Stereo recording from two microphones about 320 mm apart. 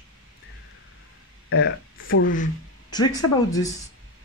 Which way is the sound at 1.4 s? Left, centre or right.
Left.